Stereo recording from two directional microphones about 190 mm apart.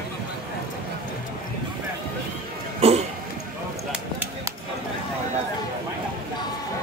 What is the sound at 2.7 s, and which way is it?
Cough, 35° right (ahead or behind).